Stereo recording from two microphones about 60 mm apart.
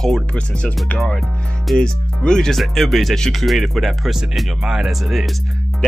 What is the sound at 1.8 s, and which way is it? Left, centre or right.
Speech, centre.